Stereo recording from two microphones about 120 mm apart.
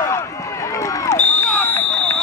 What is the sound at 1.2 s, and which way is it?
Smoke detector, 15° left (ahead or behind).